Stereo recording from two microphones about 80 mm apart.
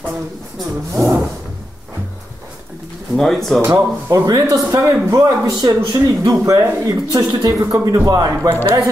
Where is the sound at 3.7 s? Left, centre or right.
Right.